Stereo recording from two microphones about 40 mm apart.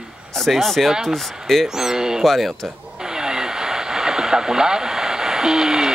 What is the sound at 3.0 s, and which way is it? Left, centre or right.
Radio, centre.